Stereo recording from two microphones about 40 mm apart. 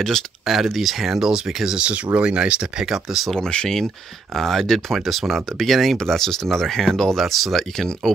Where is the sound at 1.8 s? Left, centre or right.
Right; by 3.3 s centre.